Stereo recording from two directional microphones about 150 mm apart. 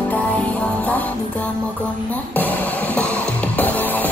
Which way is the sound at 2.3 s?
10° left (ahead or behind).